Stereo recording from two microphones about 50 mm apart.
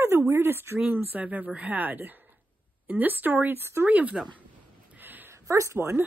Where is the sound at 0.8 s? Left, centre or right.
Right.